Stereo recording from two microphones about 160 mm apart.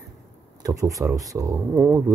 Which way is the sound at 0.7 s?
20° right (ahead or behind).